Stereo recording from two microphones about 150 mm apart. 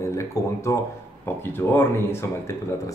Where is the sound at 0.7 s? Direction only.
20° left (ahead or behind).